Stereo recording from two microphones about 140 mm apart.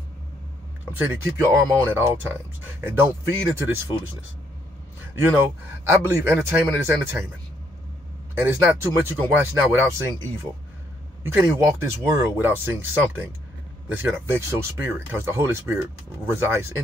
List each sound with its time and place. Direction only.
0.9 s speech: 15° right (ahead or behind)
5.9 s speech: 20° right (ahead or behind)
8.4 s speech: 20° right (ahead or behind)